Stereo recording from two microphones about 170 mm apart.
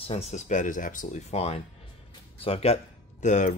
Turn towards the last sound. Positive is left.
turn(degrees=45)  # may be behind; listen again after turning